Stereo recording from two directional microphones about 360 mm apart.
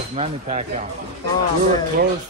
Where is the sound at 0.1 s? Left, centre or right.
Centre.